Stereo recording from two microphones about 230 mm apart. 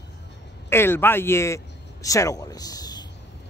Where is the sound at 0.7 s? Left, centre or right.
Centre.